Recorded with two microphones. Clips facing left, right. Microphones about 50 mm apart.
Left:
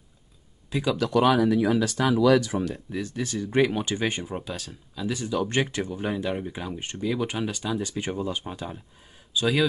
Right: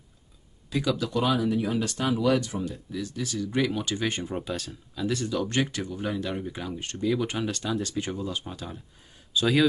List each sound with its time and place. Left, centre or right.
0.7 s speech: centre
1.0 s speech: left
2.7 s speech: left
4.2 s speech: centre
5.5 s speech: left
7.0 s speech: centre
8.0 s speech: left
9.3 s a man's voice: centre